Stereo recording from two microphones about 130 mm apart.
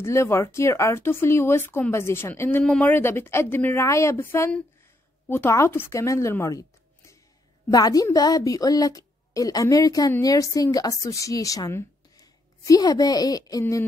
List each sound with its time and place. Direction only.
0.0 s a woman's voice: 20° left (ahead or behind)
7.7 s a woman's voice: 30° left (ahead or behind)